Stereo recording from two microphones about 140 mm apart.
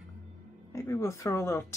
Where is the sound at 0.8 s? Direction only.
20° left (ahead or behind).